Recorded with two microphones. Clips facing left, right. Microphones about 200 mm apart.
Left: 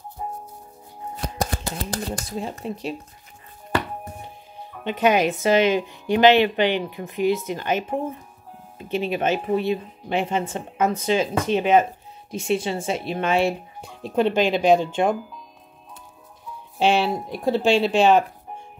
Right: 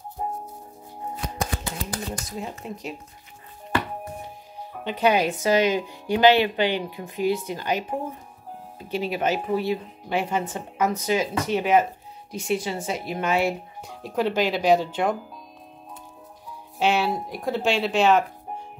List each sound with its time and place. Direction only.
0.2 s music: 45° right (ahead or behind)
1.2 s shuffling cards: 40° left (ahead or behind)
4.8 s a woman's voice: 20° left (ahead or behind)
8.8 s a woman's voice: 25° left (ahead or behind)
16.7 s speech: 30° left (ahead or behind)